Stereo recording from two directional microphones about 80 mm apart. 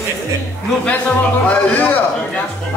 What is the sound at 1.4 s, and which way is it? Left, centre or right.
Speech, centre.